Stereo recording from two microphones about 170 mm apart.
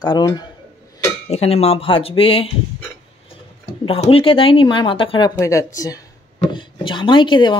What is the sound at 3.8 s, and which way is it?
Speech, 35° left (ahead or behind).